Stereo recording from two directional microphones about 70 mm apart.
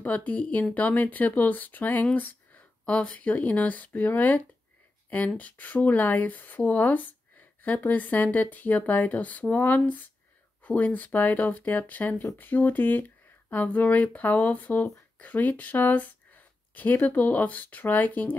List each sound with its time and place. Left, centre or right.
0.0 s speech: left
2.1 s a sound: left
2.8 s speech: centre
5.4 s speech: left